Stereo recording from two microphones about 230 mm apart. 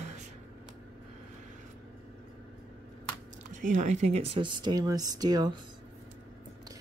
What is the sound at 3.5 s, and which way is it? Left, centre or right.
Speech, right.